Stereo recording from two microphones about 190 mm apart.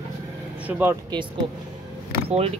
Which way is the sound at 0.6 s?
10° right (ahead or behind).